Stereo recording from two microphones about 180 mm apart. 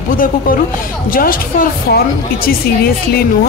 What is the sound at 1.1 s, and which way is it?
Speech, 50° left (ahead or behind).